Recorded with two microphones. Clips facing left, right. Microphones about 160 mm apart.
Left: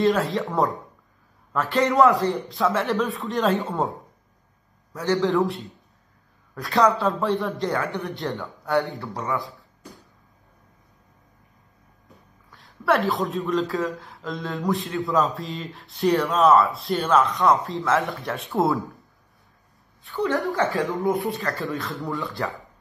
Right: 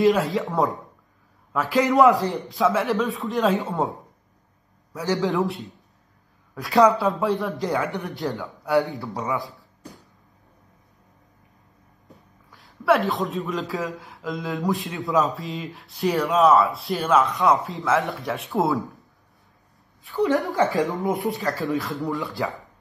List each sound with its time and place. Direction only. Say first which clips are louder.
0.0 s speech: right 2 dB; centre (ahead or behind)
2.0 s speech: right 1 dB; 20° right (ahead or behind)
2.5 s speech: right 5 dB; centre (ahead or behind)
4.9 s speech: left 2 dB; 10° right (ahead or behind)
5.4 s speech: left 1 dB; centre (ahead or behind)
6.8 s speech: right 2 dB; centre (ahead or behind)
8.2 s a man's voice: right 1 dB; centre (ahead or behind)
9.1 s speech: even; 15° right (ahead or behind)
12.4 s speech: right 2 dB; centre (ahead or behind)
20.2 s speech: right 2 dB; 20° right (ahead or behind)
22.3 s speech: right 2 dB; centre (ahead or behind)